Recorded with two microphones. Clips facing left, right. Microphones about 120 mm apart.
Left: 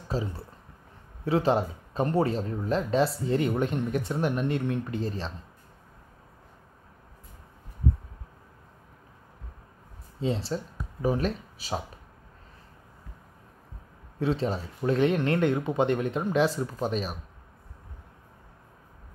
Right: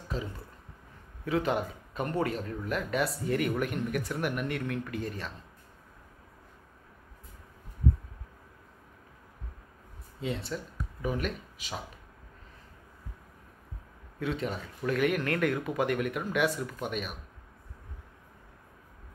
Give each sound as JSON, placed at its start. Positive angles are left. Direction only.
{"t": 0.1, "sound": "speech", "side_deg": 35}
{"t": 10.2, "sound": "speech", "side_deg": 30}
{"t": 14.2, "sound": "speech", "side_deg": 30}